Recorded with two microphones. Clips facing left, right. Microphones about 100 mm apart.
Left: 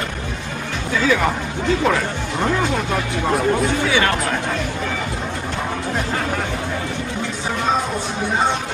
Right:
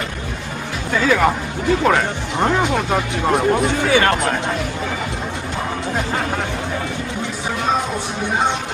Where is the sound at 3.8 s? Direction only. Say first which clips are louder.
Right 2 dB; 45° right (ahead or behind).